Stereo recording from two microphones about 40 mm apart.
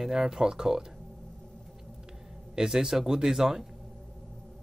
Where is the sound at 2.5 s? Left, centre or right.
Centre.